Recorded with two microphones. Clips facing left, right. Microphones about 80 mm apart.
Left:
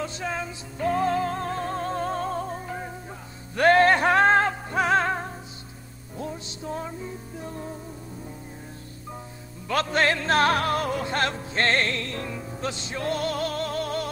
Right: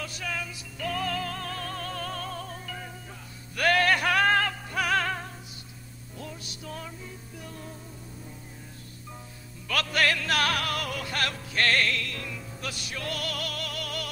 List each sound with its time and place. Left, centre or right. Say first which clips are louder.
0.0 s music: left 5 dB; left
9.7 s music: left 4 dB; left